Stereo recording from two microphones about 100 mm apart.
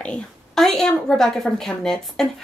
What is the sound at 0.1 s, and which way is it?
A woman's voice, 5° left (ahead or behind).